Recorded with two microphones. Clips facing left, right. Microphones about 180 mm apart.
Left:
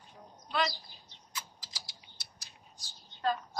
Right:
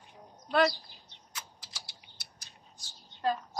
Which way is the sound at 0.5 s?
65° right (ahead or behind).